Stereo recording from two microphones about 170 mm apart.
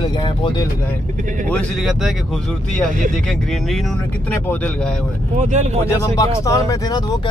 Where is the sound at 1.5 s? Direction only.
Centre (ahead or behind).